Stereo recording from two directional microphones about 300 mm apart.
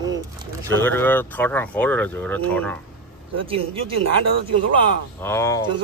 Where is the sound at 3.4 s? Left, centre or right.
Centre.